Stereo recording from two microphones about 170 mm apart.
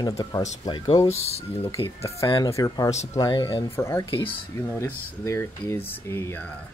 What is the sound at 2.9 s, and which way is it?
Speech, 40° left (ahead or behind).